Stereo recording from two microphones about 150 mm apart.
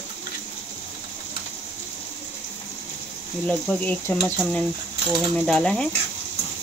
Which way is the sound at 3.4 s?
10° left (ahead or behind).